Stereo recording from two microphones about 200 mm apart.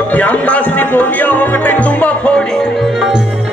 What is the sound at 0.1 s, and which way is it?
Music, 5° left (ahead or behind).